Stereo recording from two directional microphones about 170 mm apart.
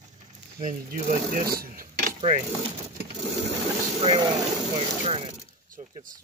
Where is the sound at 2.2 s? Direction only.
40° right (ahead or behind).